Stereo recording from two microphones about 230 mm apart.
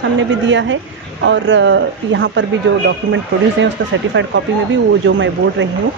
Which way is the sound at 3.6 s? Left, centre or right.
Right.